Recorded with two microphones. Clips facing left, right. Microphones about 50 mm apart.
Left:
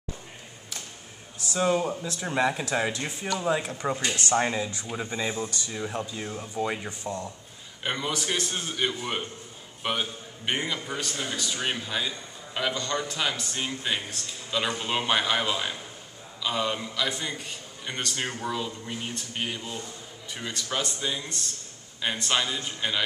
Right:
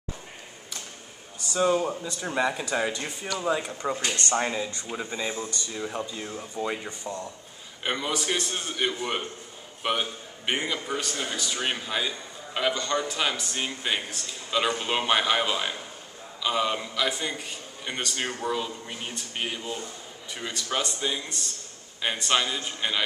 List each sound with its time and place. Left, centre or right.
1.4 s speech: centre
3.7 s a man's voice: centre